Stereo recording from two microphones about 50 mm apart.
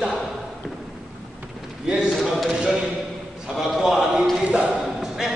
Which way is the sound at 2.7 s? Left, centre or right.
Right.